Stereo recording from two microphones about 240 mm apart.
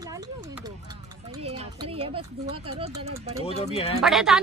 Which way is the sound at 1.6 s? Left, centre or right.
Right.